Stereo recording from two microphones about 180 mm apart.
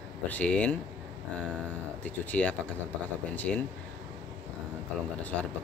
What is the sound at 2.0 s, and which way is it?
Speech, 5° left (ahead or behind).